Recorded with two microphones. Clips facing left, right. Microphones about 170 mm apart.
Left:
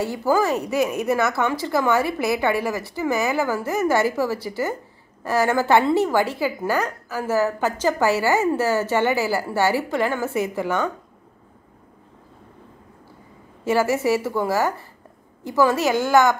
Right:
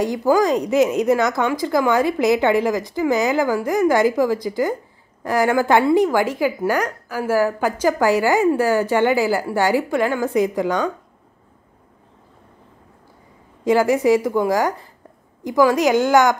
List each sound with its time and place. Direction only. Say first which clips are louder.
0.0 s speech: right 4 dB; 15° right (ahead or behind)
13.7 s speech: right 4 dB; 15° right (ahead or behind)